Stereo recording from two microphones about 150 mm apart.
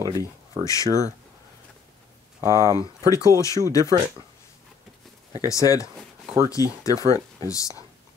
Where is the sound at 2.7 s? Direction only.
20° left (ahead or behind).